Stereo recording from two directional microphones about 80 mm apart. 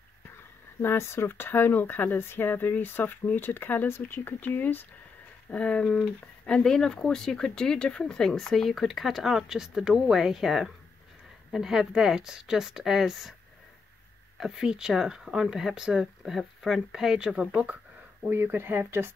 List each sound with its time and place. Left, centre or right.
0.8 s speech: left
5.5 s a woman's voice: centre
14.4 s a woman's voice: centre
18.2 s speech: right